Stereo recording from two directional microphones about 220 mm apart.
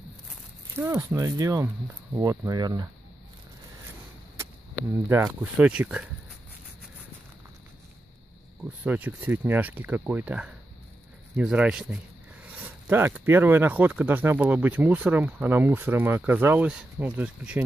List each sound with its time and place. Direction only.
0.7 s speech: 10° right (ahead or behind)
5.0 s speech: 10° right (ahead or behind)
8.8 s speech: 10° right (ahead or behind)